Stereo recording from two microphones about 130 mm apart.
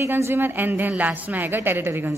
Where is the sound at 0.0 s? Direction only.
20° right (ahead or behind).